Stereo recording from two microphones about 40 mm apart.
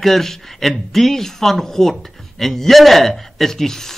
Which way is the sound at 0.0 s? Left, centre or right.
Centre.